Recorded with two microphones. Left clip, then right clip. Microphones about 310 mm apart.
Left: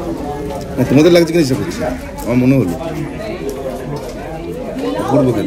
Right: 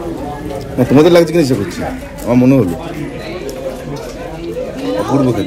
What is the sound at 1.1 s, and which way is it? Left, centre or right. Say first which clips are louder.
A man's voice: right 2 dB; centre.